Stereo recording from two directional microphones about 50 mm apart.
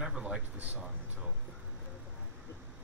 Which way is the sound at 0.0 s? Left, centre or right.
Centre.